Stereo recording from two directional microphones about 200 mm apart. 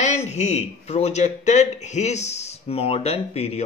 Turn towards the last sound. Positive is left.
turn(degrees=30)  # may be behind; listen again after turning